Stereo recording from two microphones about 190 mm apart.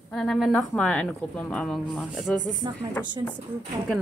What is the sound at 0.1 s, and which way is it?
Speech, centre (ahead or behind).